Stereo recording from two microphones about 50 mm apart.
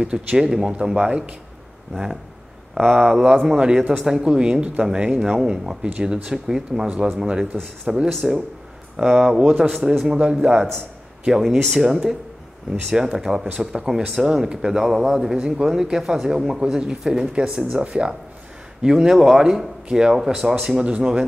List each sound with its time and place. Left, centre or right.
0.0 s speech: centre
2.7 s speech: centre
5.3 s speech: centre
8.1 s speech: centre
9.6 s a man's voice: centre
10.0 s speech: right
10.3 s speech: centre
17.7 s speech: right
20.8 s speech: centre